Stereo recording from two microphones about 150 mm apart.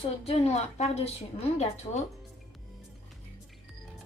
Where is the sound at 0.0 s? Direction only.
40° left (ahead or behind).